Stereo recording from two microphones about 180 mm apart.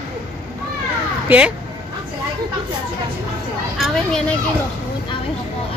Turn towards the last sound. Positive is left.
turn(degrees=5)  # may be behind; listen again after turning